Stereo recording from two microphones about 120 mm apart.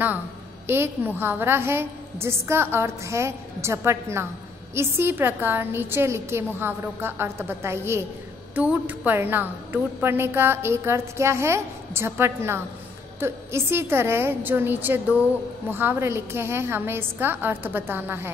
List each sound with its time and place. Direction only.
0.7 s a woman's voice: 20° right (ahead or behind)